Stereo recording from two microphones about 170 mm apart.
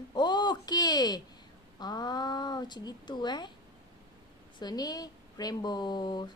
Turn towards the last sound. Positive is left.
turn(degrees=25)  # may be behind; listen again after turning